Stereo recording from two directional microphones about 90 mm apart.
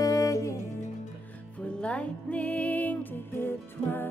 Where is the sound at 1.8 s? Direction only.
15° left (ahead or behind).